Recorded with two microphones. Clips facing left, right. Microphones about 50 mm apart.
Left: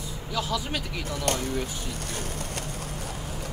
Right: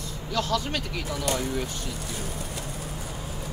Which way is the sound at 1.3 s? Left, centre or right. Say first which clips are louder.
Even; left.